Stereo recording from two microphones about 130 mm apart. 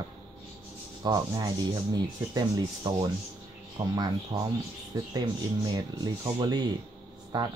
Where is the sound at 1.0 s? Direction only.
35° right (ahead or behind).